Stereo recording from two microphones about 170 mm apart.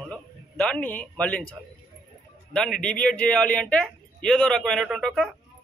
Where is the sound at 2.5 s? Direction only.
5° left (ahead or behind).